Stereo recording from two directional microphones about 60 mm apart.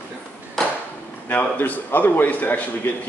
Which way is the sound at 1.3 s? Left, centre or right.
Left.